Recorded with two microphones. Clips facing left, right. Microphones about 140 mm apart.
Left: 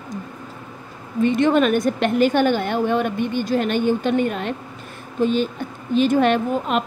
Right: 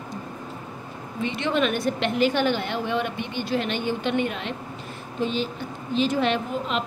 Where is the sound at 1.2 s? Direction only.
45° left (ahead or behind).